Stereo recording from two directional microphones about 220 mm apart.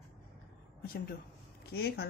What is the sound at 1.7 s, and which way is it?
Speech, 45° left (ahead or behind).